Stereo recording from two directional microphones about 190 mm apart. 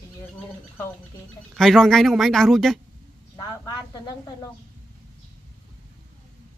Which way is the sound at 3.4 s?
20° left (ahead or behind).